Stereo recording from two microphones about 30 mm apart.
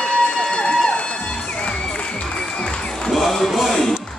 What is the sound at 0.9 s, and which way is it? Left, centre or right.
Music, left.